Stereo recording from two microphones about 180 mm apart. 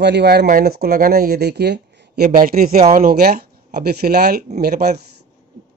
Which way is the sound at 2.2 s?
45° right (ahead or behind).